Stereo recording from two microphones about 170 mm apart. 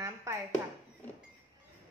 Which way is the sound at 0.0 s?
20° right (ahead or behind).